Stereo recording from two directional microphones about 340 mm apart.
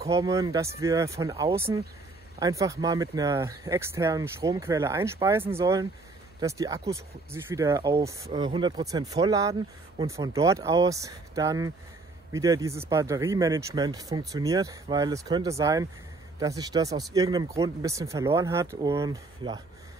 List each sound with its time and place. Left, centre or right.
0.0 s speech: centre